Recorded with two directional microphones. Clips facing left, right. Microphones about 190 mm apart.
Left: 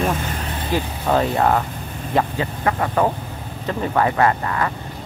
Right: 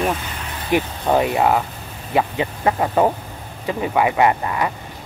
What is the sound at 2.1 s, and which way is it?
Speech, 20° right (ahead or behind).